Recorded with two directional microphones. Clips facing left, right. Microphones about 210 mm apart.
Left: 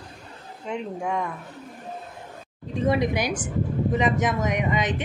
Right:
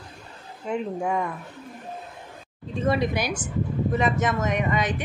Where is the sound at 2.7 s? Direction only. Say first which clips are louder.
Left 1 dB; 15° left (ahead or behind).